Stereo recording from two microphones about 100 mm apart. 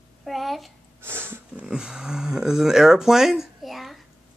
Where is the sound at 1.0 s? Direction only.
25° right (ahead or behind).